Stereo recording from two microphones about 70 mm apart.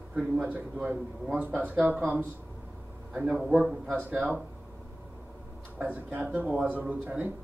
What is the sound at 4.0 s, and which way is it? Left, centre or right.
Speech, right.